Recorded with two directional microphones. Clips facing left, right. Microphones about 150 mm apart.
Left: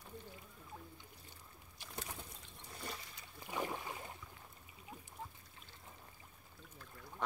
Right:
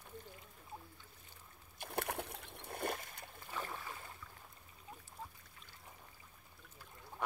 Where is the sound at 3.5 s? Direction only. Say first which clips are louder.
Left 4 dB; 15° left (ahead or behind).